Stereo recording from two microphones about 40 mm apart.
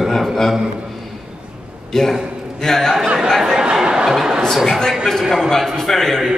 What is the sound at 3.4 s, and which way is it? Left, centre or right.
Chatter, centre.